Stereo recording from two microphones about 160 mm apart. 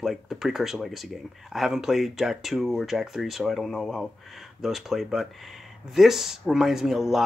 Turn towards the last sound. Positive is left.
turn(degrees=0)  # may be behind; listen again after turning